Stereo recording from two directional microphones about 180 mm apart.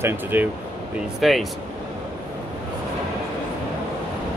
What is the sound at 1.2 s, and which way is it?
Speech, centre (ahead or behind).